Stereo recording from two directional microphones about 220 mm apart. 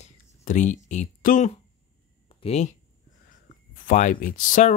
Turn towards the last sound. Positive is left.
turn(degrees=35)  # may be behind; listen again after turning